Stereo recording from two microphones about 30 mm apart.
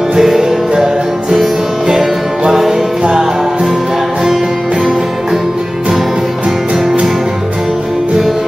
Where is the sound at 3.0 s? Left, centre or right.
Right.